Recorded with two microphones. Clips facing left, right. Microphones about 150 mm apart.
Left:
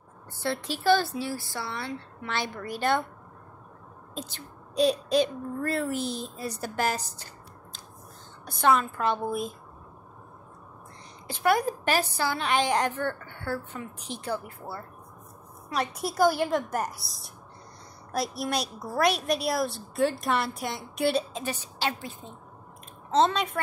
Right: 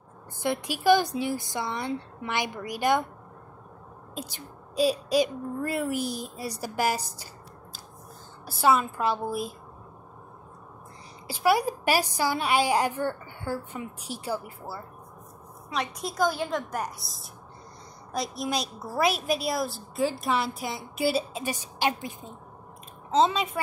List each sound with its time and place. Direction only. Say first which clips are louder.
0.4 s a woman's voice: right 2 dB; 15° right (ahead or behind)
4.1 s a woman's voice: even; 10° right (ahead or behind)
8.5 s a woman's voice: right 1 dB; 5° right (ahead or behind)
11.2 s a woman's voice: right 1 dB; 10° right (ahead or behind)
16.2 s a woman's voice: left 3 dB; 10° left (ahead or behind); by 22.3 s 15° right (ahead or behind)
23.1 s a woman's voice: even; 5° right (ahead or behind)